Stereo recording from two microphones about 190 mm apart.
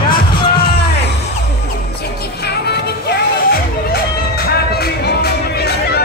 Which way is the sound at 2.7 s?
55° left (ahead or behind).